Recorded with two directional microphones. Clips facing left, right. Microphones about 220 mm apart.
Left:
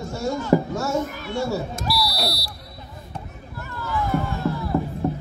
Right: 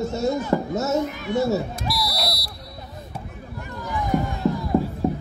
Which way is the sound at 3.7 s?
15° right (ahead or behind).